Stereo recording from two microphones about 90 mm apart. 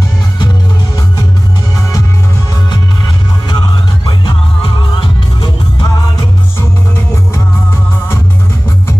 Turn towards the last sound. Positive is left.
turn(degrees=30)  # may be behind; listen again after turning